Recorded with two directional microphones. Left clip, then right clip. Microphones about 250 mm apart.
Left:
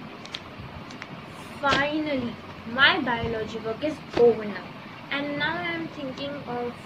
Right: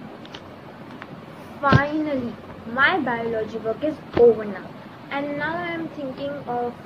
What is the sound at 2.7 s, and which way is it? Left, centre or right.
Speech, left.